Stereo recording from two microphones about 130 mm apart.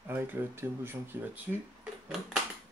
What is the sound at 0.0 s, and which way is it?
Speech, 15° right (ahead or behind).